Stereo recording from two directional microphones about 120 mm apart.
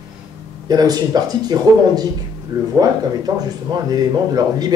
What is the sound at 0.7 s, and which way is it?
Speech, 35° right (ahead or behind).